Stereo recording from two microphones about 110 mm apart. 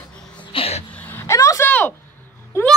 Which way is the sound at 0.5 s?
65° left (ahead or behind).